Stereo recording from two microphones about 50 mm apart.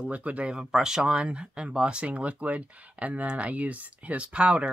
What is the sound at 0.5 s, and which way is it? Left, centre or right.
Speech, centre.